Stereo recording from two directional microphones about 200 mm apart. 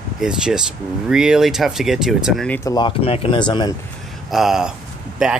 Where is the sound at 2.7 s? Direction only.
25° left (ahead or behind).